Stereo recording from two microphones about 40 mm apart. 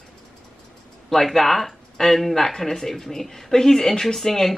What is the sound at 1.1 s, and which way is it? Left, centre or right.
A woman's voice, centre.